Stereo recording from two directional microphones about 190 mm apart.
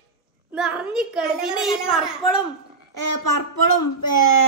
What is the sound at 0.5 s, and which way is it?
A woman's voice, 5° right (ahead or behind).